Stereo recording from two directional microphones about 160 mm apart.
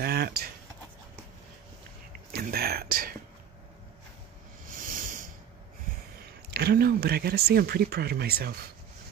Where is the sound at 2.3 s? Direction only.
75° right (ahead or behind).